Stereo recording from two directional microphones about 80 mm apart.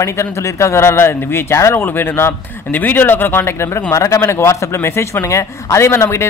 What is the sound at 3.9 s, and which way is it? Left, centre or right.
Speech, left.